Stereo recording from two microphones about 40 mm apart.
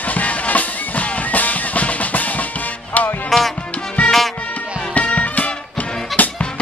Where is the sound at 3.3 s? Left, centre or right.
Centre.